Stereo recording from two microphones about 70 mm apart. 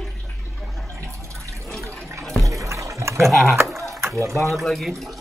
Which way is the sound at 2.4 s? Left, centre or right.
Right.